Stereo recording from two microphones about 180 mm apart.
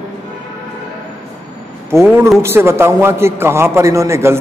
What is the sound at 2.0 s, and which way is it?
A man's voice, 10° right (ahead or behind).